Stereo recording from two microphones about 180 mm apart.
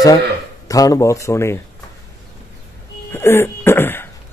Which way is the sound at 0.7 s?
20° left (ahead or behind).